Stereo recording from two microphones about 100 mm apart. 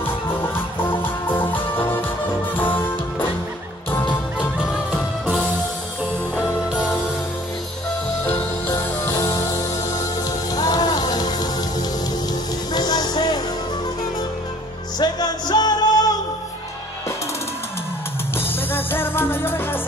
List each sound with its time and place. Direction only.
0.0 s music: 20° left (ahead or behind)
8.7 s music: 35° left (ahead or behind)
12.7 s music: 40° left (ahead or behind)
15.0 s music: 45° left (ahead or behind)
18.4 s music: 20° left (ahead or behind)